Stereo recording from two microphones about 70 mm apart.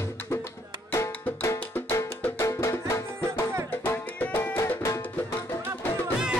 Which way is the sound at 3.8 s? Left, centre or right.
Left.